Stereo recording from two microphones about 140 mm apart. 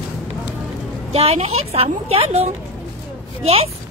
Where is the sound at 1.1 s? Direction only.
45° right (ahead or behind).